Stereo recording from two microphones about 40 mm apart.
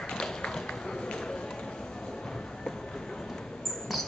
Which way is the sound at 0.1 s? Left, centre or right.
Centre.